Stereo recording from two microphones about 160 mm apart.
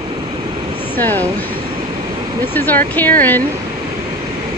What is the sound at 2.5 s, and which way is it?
Speech, 10° left (ahead or behind).